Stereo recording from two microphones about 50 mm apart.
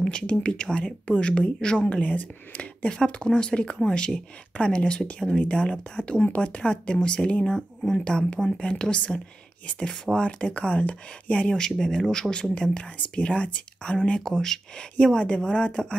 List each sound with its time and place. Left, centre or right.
0.1 s speech: left
1.9 s speech: left